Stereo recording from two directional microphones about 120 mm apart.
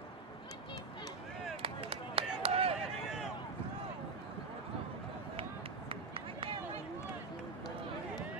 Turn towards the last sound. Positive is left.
turn(degrees=-50)  # may be behind; listen again after turning